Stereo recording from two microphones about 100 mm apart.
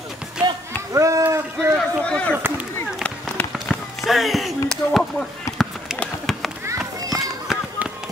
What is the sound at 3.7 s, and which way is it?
Basketball bounce, 5° right (ahead or behind).